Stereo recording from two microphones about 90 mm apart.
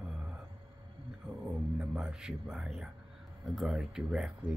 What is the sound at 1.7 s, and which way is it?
A man's voice, 10° right (ahead or behind).